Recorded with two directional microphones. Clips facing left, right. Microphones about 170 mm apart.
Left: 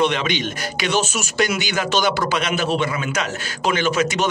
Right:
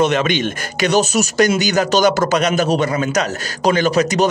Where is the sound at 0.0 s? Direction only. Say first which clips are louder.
Right 4 dB; 45° right (ahead or behind).